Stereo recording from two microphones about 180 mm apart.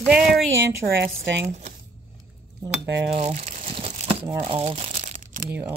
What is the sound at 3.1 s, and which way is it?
Crumpling, 40° right (ahead or behind).